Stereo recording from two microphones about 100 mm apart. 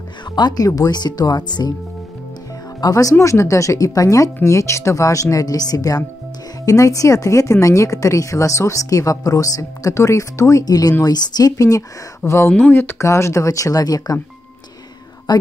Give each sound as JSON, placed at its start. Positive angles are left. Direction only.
{"t": 0.4, "sound": "speech", "side_deg": 40}
{"t": 2.8, "sound": "speech", "side_deg": 35}
{"t": 12.4, "sound": "speech", "side_deg": 15}
{"t": 15.3, "sound": "speech", "side_deg": 45}